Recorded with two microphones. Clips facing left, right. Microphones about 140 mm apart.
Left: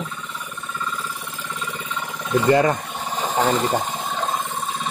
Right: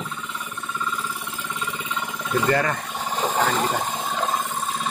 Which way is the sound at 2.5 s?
20° left (ahead or behind).